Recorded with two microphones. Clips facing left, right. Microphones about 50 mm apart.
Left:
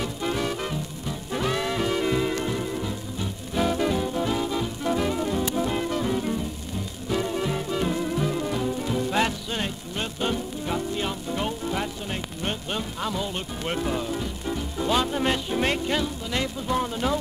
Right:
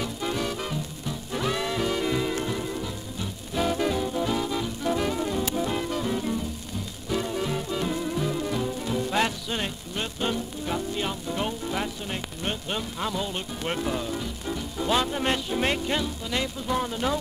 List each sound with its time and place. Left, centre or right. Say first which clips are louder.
0.0 s music: left 2 dB; centre